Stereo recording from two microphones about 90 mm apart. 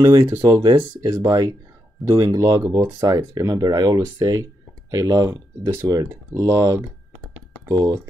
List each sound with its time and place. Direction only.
0.0 s speech: 35° right (ahead or behind)
0.5 s speech: 50° right (ahead or behind)
1.1 s speech: 35° right (ahead or behind)
2.7 s speech: 50° right (ahead or behind); by 5.9 s 30° right (ahead or behind)
5.9 s speech: 40° right (ahead or behind)